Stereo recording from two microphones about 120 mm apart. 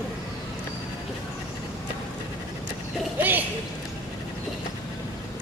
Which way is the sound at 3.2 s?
15° right (ahead or behind).